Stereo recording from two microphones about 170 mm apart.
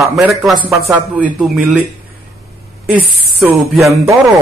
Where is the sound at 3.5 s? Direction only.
Centre (ahead or behind).